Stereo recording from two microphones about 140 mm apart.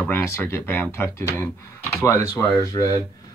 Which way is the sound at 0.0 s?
15° left (ahead or behind).